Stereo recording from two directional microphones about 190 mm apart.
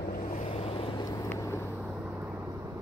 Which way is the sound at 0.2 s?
45° left (ahead or behind).